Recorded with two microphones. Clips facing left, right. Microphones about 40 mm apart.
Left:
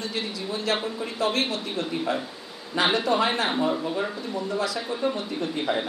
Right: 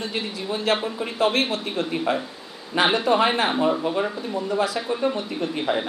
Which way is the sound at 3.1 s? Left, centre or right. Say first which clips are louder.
Right 4 dB; right.